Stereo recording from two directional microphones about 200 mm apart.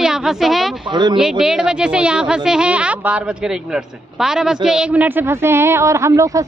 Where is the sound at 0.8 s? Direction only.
20° right (ahead or behind).